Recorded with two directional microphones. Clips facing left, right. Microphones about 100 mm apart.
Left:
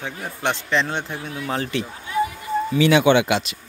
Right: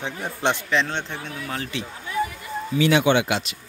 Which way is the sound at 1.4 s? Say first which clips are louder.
Left 7 dB; 30° left (ahead or behind).